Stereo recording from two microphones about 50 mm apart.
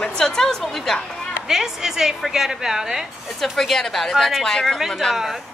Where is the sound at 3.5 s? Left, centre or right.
Centre.